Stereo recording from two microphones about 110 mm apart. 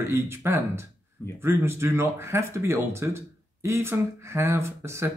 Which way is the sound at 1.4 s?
25° right (ahead or behind).